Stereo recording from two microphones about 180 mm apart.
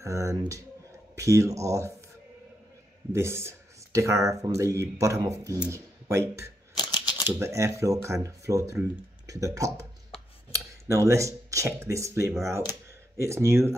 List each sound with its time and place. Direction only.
0.0 s speech: 15° right (ahead or behind)
3.1 s speech: 15° right (ahead or behind)
6.8 s typewriter: 25° left (ahead or behind)
7.3 s speech: 15° right (ahead or behind)